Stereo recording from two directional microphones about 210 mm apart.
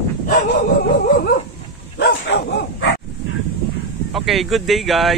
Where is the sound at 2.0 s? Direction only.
55° left (ahead or behind).